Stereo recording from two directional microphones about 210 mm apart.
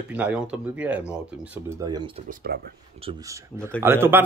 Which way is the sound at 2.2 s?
45° right (ahead or behind).